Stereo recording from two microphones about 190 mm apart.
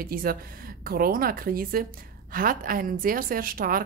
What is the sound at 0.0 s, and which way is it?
Speech, 50° right (ahead or behind).